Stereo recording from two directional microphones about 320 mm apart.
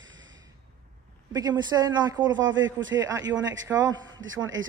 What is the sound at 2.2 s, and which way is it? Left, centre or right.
Speech, right.